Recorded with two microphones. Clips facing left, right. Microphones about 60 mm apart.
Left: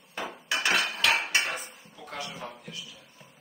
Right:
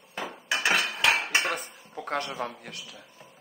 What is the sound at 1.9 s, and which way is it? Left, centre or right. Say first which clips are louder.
Speech: right 8 dB; right.